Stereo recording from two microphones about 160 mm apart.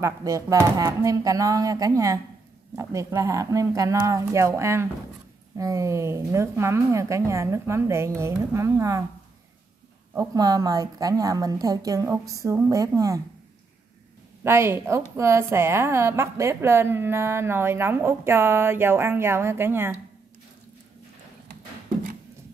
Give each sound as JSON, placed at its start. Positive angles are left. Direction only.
{"t": 0.0, "sound": "a woman's voice", "side_deg": -20}
{"t": 10.1, "sound": "a woman's voice", "side_deg": -25}
{"t": 14.4, "sound": "a woman's voice", "side_deg": -15}